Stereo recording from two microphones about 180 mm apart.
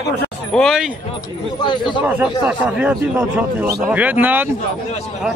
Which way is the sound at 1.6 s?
25° left (ahead or behind).